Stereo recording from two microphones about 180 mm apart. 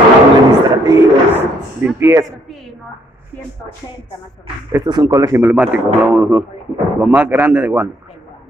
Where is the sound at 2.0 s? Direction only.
15° right (ahead or behind).